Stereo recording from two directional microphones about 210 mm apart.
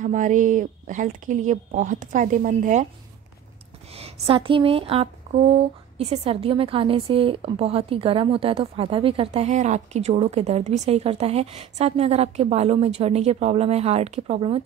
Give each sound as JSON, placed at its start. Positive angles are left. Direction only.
{"t": 0.0, "sound": "speech", "side_deg": -35}
{"t": 3.9, "sound": "speech", "side_deg": -25}